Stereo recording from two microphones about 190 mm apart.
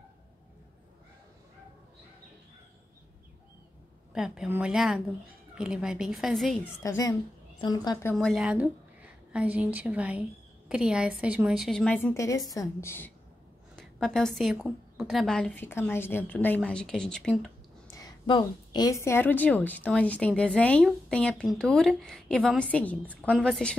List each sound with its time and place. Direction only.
4.1 s a woman's voice: 5° right (ahead or behind)
6.8 s a woman's voice: 20° left (ahead or behind)
8.1 s a woman's voice: 5° left (ahead or behind)
17.8 s a woman's voice: 20° left (ahead or behind)